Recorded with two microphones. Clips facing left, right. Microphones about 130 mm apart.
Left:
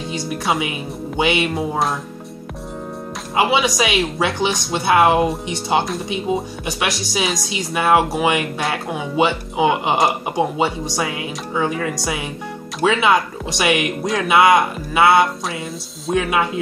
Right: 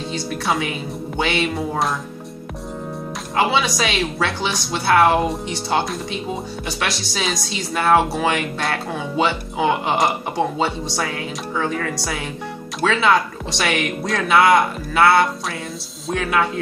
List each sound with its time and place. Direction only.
0.6 s speech: 15° left (ahead or behind)
3.3 s speech: 15° left (ahead or behind)